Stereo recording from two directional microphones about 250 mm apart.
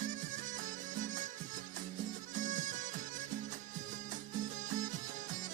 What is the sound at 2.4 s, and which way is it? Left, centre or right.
Music, right.